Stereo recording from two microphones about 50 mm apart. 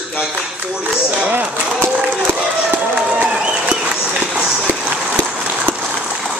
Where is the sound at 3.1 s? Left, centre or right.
Right.